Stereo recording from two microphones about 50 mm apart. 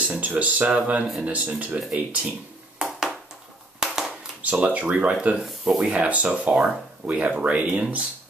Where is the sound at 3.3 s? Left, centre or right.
Centre.